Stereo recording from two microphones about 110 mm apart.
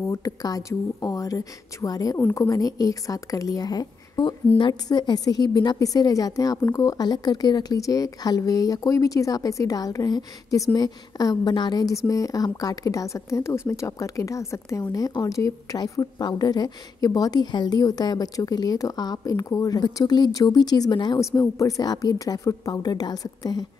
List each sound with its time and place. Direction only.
0.1 s a woman's voice: 35° left (ahead or behind)
21.4 s a woman's voice: 30° left (ahead or behind)